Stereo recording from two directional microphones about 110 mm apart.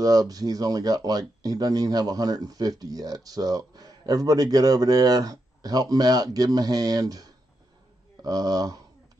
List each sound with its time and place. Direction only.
0.0 s speech: 35° right (ahead or behind)